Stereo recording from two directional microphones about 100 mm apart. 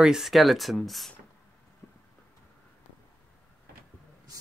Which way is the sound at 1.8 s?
20° left (ahead or behind).